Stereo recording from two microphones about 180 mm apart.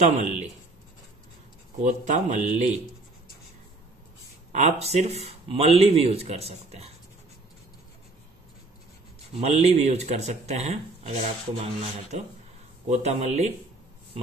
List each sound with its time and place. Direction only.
1.8 s speech: 40° right (ahead or behind)
4.5 s speech: 40° right (ahead or behind)
9.4 s speech: 35° right (ahead or behind)